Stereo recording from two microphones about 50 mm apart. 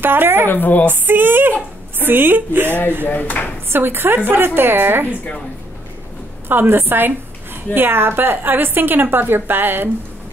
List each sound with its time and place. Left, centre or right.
0.0 s a woman's voice: right
0.5 s speech: left
0.8 s a woman's voice: right
3.1 s speech: left
3.6 s a woman's voice: right
6.5 s a woman's voice: right